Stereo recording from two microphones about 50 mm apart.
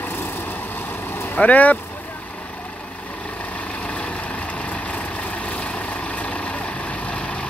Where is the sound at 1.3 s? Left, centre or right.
Left.